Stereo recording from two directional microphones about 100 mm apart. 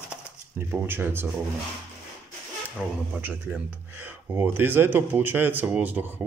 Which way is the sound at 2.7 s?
15° right (ahead or behind).